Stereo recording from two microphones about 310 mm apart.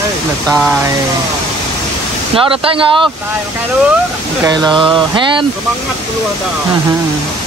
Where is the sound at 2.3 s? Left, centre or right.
Centre.